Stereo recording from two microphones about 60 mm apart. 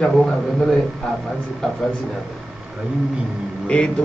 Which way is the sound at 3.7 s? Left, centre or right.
Centre.